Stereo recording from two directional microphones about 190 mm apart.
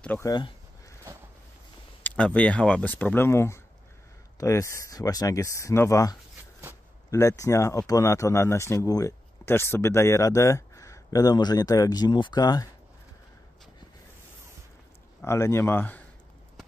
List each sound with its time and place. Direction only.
0.0 s speech: 10° left (ahead or behind)
0.3 s a sound: 20° left (ahead or behind)
2.0 s speech: 5° left (ahead or behind)
15.2 s speech: 15° left (ahead or behind)